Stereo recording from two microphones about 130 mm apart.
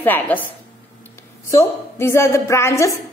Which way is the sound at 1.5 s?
20° left (ahead or behind).